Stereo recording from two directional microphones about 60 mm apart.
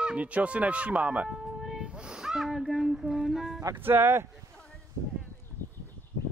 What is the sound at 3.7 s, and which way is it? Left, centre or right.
Speech, right.